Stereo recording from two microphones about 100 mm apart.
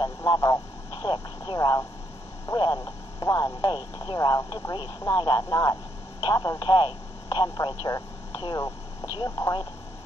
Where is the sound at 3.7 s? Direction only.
50° left (ahead or behind).